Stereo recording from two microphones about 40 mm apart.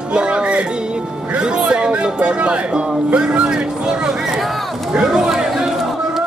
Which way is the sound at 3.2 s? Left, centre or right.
Centre.